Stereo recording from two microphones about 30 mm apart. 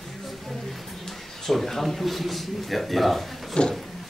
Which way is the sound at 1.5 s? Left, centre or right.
Centre.